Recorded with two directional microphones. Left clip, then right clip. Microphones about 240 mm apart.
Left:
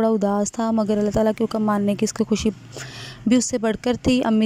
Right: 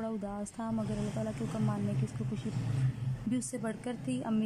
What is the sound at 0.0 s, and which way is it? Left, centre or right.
Speech, left.